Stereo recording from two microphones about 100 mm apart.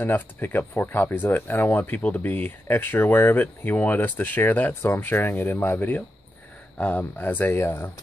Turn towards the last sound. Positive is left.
turn(degrees=25)  # may be behind; listen again after turning